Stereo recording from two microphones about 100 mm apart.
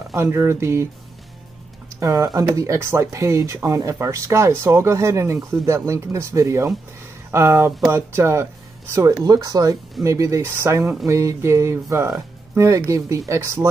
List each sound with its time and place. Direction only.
0.1 s speech: 30° right (ahead or behind)
2.0 s speech: 35° right (ahead or behind)
9.2 s speech: 40° right (ahead or behind)